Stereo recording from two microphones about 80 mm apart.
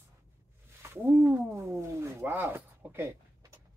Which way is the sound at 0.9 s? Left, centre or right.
Right.